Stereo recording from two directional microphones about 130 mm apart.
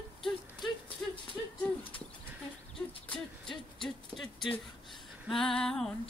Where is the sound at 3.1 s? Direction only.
Centre (ahead or behind).